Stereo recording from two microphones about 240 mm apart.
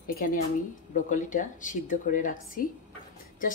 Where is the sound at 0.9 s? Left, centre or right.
Left.